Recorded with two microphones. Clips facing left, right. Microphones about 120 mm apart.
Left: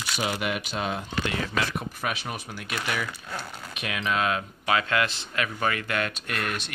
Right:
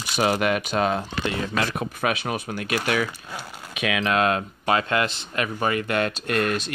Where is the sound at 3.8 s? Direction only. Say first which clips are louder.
Right 6 dB; 80° right.